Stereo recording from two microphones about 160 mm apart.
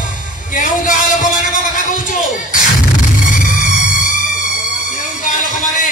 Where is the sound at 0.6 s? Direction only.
55° left (ahead or behind).